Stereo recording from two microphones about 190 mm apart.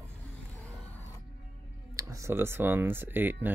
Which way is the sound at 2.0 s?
15° right (ahead or behind).